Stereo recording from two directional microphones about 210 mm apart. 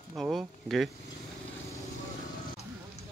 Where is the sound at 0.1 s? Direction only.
Centre (ahead or behind).